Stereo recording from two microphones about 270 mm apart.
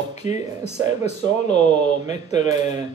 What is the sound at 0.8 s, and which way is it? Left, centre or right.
Speech, left.